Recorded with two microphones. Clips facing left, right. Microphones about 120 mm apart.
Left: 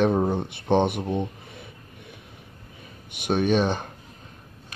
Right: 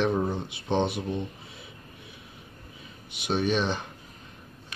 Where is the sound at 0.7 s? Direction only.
55° left (ahead or behind).